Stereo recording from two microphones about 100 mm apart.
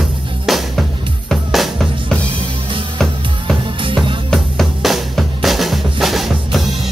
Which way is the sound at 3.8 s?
55° right (ahead or behind).